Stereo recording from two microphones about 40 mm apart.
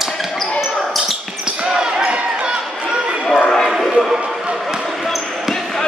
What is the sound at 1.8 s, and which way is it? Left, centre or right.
Basketball bounce, right.